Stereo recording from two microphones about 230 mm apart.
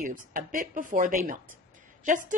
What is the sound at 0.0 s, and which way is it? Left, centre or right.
A woman's voice, right.